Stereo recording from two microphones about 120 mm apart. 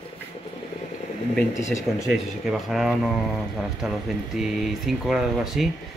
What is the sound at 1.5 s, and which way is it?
Speech, 25° left (ahead or behind).